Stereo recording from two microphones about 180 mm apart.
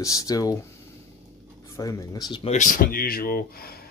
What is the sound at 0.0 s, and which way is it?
Speech, 20° left (ahead or behind).